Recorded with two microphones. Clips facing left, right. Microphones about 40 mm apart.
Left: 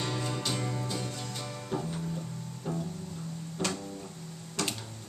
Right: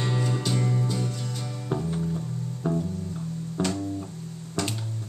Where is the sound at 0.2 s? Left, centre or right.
Centre.